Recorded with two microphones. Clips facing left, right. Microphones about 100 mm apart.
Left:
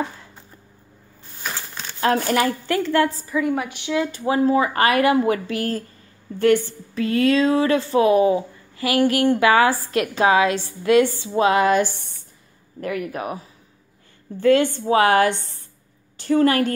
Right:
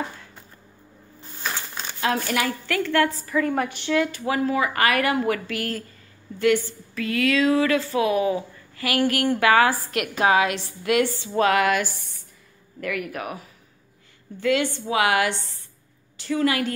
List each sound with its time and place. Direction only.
2.0 s a woman's voice: 40° left (ahead or behind)
3.3 s a woman's voice: 5° left (ahead or behind)
3.9 s a woman's voice: 25° left (ahead or behind); by 16.7 s 40° left (ahead or behind)